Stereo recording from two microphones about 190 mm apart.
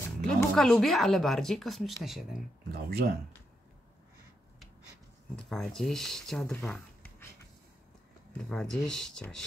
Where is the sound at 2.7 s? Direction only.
55° right (ahead or behind).